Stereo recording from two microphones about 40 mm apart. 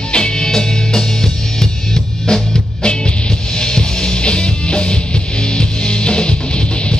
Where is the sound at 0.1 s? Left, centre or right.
Centre.